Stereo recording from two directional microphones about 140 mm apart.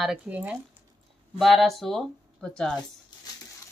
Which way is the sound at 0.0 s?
5° right (ahead or behind).